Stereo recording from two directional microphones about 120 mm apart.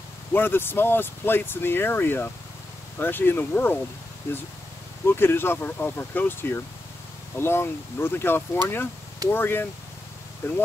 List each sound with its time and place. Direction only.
0.3 s speech: 20° left (ahead or behind)
5.0 s speech: 20° left (ahead or behind)